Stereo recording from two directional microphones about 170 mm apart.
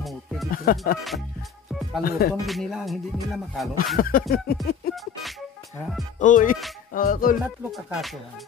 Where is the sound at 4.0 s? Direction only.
60° left (ahead or behind).